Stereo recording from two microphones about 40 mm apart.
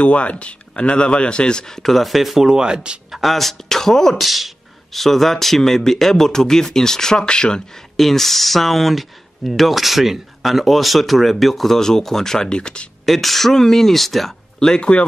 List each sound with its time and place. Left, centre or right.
0.0 s speech: left; by 2.4 s centre
2.4 s speech: centre
3.1 s speech: centre
4.2 s speech: centre; by 7.6 s left
7.9 s speech: centre; by 12.8 s left
13.0 s speech: centre
14.8 s speech: left